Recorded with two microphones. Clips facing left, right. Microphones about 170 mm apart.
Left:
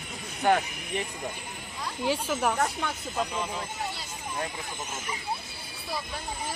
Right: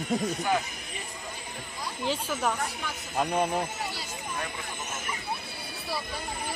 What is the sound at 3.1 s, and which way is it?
Speech, 55° right (ahead or behind).